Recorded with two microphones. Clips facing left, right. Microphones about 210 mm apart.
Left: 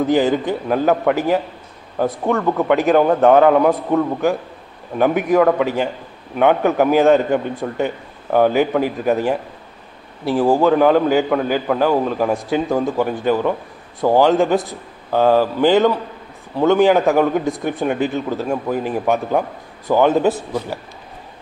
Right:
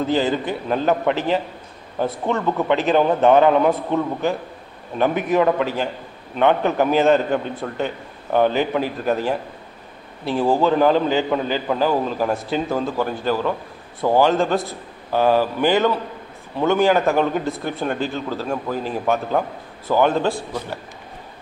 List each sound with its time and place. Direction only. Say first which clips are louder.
0.0 s a man's voice: left 4 dB; 15° left (ahead or behind)
12.7 s a man's voice: left 4 dB; 15° left (ahead or behind)
16.5 s a man's voice: left 4 dB; 15° left (ahead or behind)
17.0 s a man's voice: left 3 dB; centre (ahead or behind)
17.5 s a man's voice: left 4 dB; 15° left (ahead or behind)